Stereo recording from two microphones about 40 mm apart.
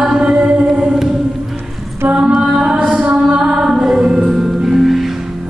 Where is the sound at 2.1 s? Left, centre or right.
Right.